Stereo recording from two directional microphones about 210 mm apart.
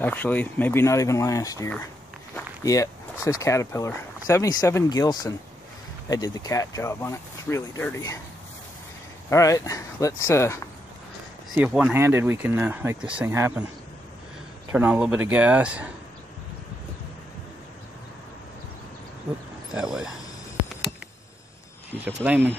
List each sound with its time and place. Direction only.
0.0 s speech: 10° left (ahead or behind)
9.3 s speech: 15° left (ahead or behind)
11.5 s speech: 5° right (ahead or behind)
14.7 s speech: 5° right (ahead or behind)
19.7 s speech: 5° right (ahead or behind)
22.0 s speech: 10° right (ahead or behind)